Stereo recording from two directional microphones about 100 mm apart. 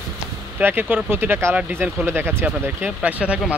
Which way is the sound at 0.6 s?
20° right (ahead or behind).